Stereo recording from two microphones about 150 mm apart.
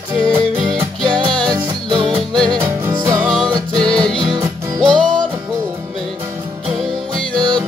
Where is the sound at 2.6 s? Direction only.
20° right (ahead or behind).